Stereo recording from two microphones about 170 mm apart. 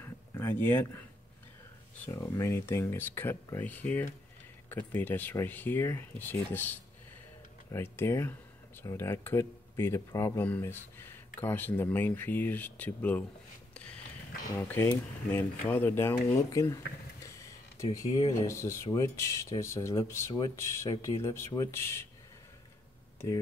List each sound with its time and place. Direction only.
0.0 s a sound: 15° left (ahead or behind)
2.0 s speech: 15° left (ahead or behind)
14.5 s speech: 15° left (ahead or behind)